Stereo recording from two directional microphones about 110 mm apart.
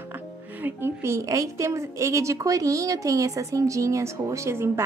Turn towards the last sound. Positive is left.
turn(degrees=-25)  # may be behind; listen again after turning